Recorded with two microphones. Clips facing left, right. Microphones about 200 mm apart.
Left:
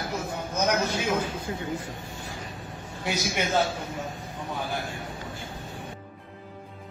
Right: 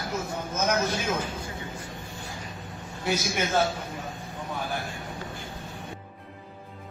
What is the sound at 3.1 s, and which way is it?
Speech, 15° left (ahead or behind).